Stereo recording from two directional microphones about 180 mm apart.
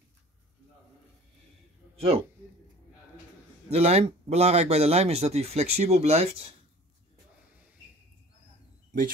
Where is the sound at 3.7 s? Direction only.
35° right (ahead or behind).